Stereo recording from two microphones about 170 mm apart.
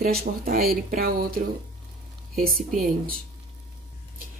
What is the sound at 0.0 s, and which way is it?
Speech, 60° right (ahead or behind).